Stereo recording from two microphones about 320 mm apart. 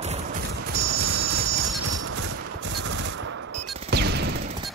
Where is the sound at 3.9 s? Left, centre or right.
Right.